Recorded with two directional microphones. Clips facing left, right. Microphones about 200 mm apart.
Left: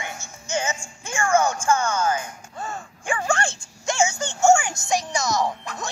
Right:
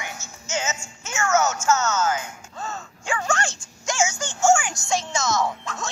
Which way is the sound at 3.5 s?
60° left (ahead or behind).